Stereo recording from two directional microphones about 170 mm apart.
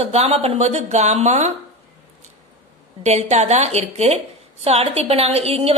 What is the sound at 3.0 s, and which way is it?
A woman's voice, 40° right (ahead or behind).